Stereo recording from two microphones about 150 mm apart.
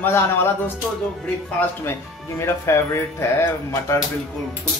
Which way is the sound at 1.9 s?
15° left (ahead or behind).